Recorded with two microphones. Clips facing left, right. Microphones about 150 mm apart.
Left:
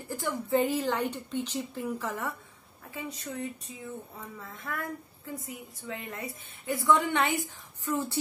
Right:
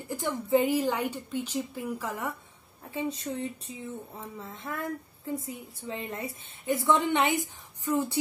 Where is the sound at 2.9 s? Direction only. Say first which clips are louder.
Right 5 dB; 30° right (ahead or behind).